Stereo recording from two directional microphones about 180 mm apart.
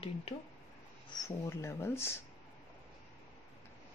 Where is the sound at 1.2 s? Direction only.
15° left (ahead or behind).